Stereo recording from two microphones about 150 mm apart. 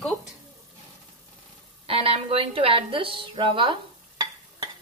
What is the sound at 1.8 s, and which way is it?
A woman's voice, 40° right (ahead or behind).